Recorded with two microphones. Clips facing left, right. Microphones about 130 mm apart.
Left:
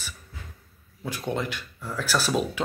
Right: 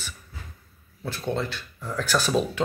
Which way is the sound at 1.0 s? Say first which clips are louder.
Right 1 dB; 15° left (ahead or behind).